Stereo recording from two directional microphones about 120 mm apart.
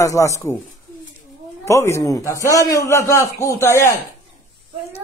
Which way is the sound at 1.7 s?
25° left (ahead or behind).